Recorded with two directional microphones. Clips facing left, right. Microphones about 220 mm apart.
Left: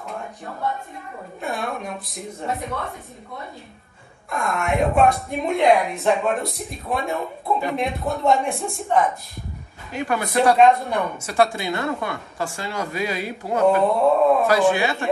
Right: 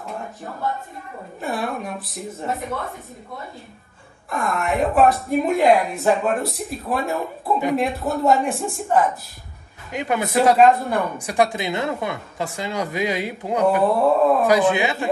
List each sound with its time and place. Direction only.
1.4 s speech: centre (ahead or behind)
4.3 s speech: centre (ahead or behind)
9.9 s a woman's voice: 20° right (ahead or behind)
10.5 s speech: centre (ahead or behind)
11.1 s a woman's voice: 15° right (ahead or behind)
13.8 s speech: centre (ahead or behind)
14.4 s a woman's voice: 20° right (ahead or behind)